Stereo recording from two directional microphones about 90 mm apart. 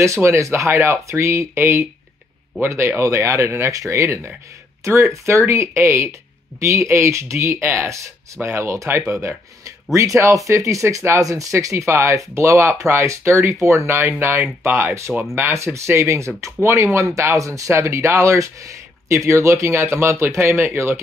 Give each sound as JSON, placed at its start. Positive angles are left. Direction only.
{"t": 0.0, "sound": "speech", "side_deg": -30}